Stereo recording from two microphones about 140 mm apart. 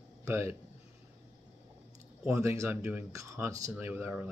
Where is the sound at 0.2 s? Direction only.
20° right (ahead or behind).